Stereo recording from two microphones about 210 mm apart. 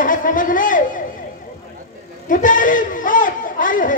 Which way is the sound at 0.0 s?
40° left (ahead or behind).